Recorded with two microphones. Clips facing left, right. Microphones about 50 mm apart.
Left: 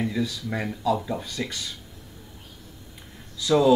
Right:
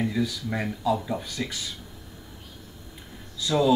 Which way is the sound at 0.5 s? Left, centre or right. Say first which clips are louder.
Left 3 dB; centre.